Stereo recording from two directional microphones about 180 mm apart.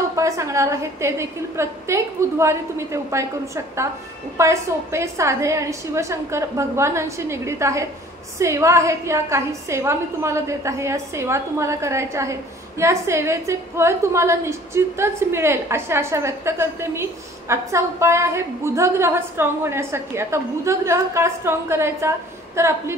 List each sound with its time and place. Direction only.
0.1 s a woman's voice: 15° right (ahead or behind)